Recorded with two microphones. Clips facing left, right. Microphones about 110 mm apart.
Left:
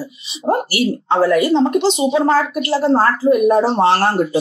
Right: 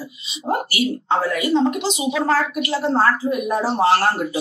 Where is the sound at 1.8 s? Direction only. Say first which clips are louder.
Left 6 dB; 30° left (ahead or behind).